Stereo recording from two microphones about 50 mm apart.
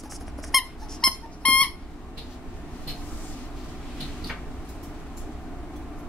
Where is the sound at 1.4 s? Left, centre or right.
Left.